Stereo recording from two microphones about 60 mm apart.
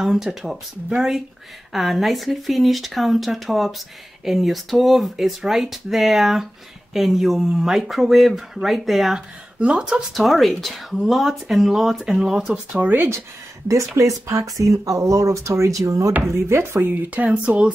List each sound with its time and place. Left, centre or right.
0.0 s speech: centre
9.6 s speech: centre
10.2 s speech: centre
13.9 s speech: right
16.2 s speech: right
16.8 s speech: right